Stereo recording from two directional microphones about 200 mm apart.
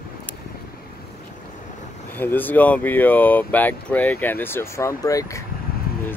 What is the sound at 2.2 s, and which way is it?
Speech, 10° left (ahead or behind).